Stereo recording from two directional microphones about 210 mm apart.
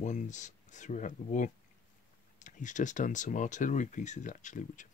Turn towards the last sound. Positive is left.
turn(degrees=35)  # may be behind; listen again after turning